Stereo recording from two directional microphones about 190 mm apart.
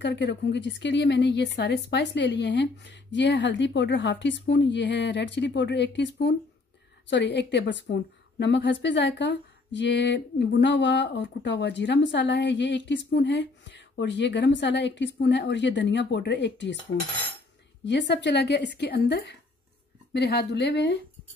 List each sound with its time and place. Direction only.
0.0 s a woman's voice: 70° left (ahead or behind)
17.8 s a woman's voice: 65° left (ahead or behind)